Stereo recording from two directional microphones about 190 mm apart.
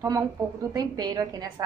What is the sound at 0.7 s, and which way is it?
Speech, 20° right (ahead or behind).